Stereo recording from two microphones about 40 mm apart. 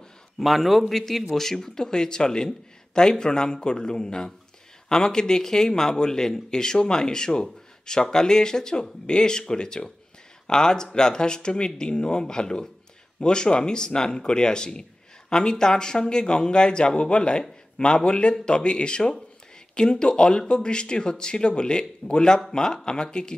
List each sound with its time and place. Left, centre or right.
0.4 s a man's voice: centre; by 23.3 s left